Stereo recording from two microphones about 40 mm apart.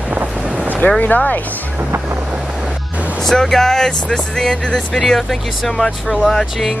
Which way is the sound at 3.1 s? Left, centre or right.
Centre.